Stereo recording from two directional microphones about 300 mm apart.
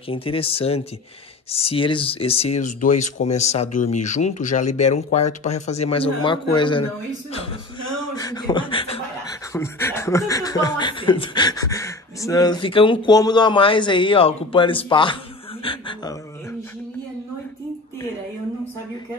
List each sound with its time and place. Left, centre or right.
0.1 s speech: centre
8.0 s speech: centre